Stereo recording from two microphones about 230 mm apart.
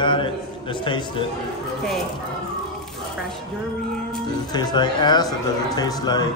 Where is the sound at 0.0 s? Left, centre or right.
Left.